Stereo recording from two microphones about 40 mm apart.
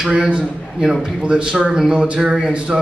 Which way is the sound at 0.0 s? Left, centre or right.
Centre.